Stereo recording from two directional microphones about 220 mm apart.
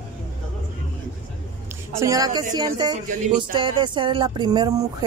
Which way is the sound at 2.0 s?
15° right (ahead or behind).